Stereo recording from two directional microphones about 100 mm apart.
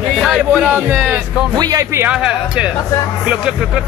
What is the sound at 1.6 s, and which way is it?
Speech, 35° right (ahead or behind).